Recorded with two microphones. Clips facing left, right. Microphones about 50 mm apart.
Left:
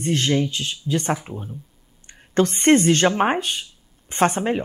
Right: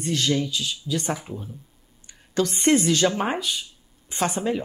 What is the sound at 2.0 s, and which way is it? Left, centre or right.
Speech, left.